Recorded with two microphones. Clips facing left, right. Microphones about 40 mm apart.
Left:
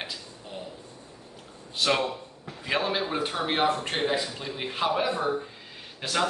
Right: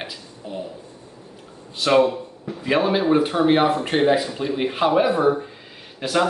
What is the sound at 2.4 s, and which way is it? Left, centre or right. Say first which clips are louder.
Speech: right 8 dB; centre.